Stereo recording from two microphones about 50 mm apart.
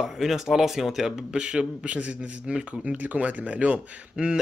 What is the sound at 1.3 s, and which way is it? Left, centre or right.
A man's voice, centre.